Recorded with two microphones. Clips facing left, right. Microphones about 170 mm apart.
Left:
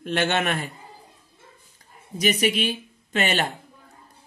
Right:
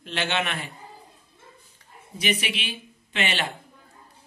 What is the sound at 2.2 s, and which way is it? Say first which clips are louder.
A woman's voice: left 6 dB; 40° left (ahead or behind).